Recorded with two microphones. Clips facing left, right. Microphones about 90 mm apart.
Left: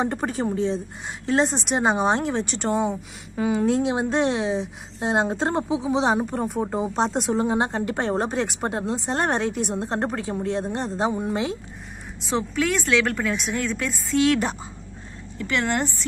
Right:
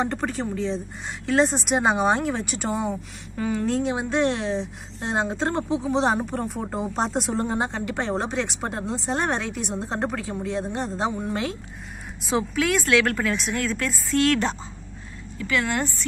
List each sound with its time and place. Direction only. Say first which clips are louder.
0.0 s speech: left 1 dB; 10° left (ahead or behind)
0.3 s speech: left 3 dB; 40° left (ahead or behind)
1.4 s a woman's voice: right 2 dB; centre (ahead or behind)
3.3 s a woman's voice: left 3 dB; 10° left (ahead or behind)
8.3 s speech: left 2 dB; 40° left (ahead or behind)
8.5 s a woman's voice: left 3 dB; centre (ahead or behind)
9.3 s a woman's voice: left 3 dB; 40° left (ahead or behind)
9.7 s a woman's voice: left 2 dB; centre (ahead or behind)
11.1 s speech: left 2 dB; 10° left (ahead or behind)
12.2 s a woman's voice: even; centre (ahead or behind)
15.3 s speech: left 1 dB; 30° left (ahead or behind)